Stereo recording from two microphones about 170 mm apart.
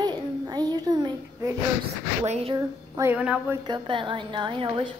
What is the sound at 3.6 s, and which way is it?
A woman's voice, 30° right (ahead or behind).